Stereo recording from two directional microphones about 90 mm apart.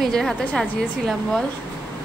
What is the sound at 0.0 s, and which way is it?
A woman's voice, centre (ahead or behind).